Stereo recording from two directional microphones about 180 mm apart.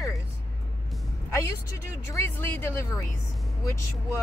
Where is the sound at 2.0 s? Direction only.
15° left (ahead or behind).